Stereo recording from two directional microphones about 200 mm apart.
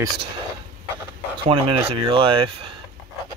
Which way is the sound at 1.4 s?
25° right (ahead or behind).